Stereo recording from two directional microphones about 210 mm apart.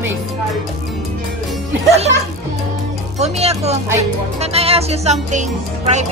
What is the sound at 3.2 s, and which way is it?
Speech, 30° right (ahead or behind).